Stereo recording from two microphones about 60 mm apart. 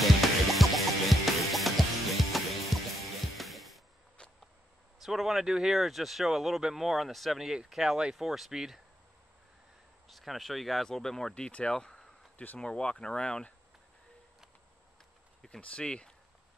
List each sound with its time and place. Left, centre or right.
0.0 s music: centre
4.2 s a sound: centre
5.0 s speech: centre
10.0 s speech: centre
15.4 s speech: centre